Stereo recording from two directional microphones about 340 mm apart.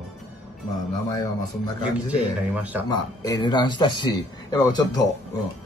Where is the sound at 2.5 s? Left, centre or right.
Centre.